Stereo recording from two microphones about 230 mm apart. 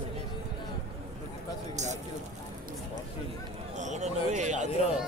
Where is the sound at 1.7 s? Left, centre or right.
Right.